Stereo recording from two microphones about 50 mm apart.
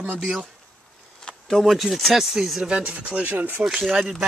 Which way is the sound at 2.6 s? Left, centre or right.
Centre.